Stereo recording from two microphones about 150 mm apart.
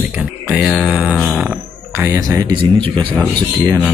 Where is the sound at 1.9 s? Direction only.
15° right (ahead or behind).